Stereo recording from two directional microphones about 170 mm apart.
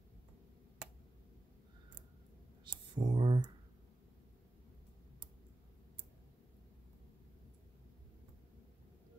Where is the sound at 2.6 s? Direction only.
25° right (ahead or behind).